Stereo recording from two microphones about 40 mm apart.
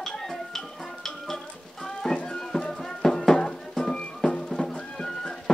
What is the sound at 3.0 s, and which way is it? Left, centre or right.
Music, centre.